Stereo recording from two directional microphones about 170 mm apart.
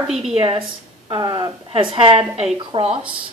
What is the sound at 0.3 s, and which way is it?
Speech, 35° right (ahead or behind).